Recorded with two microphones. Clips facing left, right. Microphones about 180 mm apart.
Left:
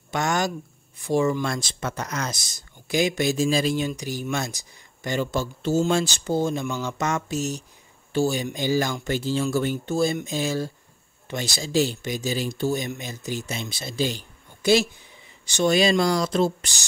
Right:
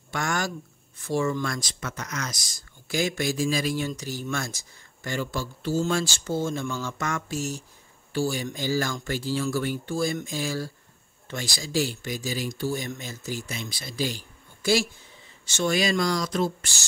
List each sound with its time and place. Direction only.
0.1 s speech: 20° left (ahead or behind)